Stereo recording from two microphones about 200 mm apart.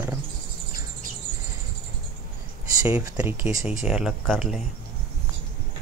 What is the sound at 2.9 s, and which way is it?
Speech, 5° right (ahead or behind).